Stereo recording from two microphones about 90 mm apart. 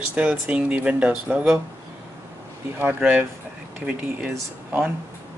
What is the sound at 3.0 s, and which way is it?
Speech, 15° right (ahead or behind).